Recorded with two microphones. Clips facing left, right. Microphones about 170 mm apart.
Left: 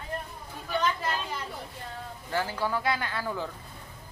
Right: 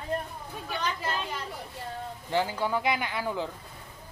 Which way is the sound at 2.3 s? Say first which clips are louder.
Right 2 dB; 20° right (ahead or behind).